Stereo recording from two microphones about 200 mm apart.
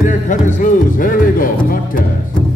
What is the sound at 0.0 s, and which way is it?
Speech, 40° left (ahead or behind).